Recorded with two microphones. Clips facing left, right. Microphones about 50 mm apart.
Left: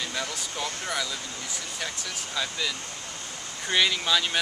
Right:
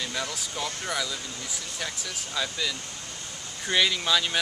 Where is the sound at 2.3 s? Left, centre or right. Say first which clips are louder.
Even; centre.